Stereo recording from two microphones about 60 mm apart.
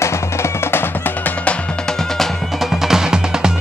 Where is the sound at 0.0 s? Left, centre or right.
Left.